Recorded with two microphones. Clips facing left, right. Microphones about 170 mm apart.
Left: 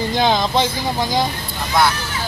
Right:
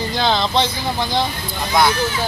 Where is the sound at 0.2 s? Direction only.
15° left (ahead or behind).